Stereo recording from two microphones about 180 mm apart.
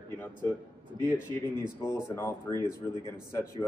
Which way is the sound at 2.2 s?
15° left (ahead or behind).